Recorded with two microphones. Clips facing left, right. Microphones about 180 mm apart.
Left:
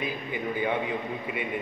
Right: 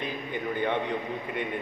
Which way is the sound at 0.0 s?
10° left (ahead or behind).